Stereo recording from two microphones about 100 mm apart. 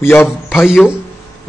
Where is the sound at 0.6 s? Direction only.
5° right (ahead or behind).